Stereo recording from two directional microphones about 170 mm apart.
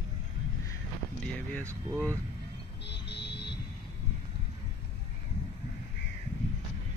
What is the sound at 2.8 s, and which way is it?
Music, 85° left.